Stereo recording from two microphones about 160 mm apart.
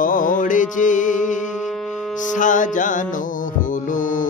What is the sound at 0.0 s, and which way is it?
Music, 60° left (ahead or behind).